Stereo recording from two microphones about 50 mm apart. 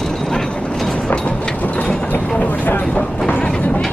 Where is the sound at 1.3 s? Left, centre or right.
Centre.